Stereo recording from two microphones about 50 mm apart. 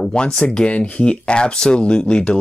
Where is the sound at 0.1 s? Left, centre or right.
Centre.